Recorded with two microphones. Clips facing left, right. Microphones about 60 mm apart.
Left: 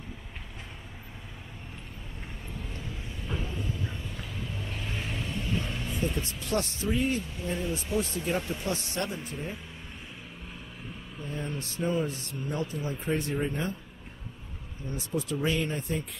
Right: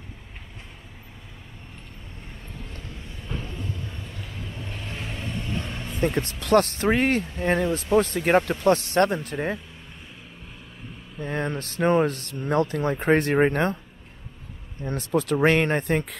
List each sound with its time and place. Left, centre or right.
2.6 s vehicle: centre
5.9 s speech: right
11.1 s speech: right
14.8 s speech: right